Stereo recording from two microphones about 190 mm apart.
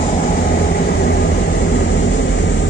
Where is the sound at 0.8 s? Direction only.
55° left (ahead or behind).